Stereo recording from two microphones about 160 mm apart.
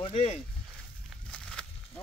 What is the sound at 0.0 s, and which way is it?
Speech, 40° left (ahead or behind).